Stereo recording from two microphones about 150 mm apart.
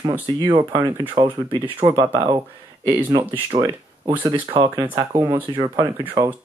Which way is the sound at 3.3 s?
25° right (ahead or behind).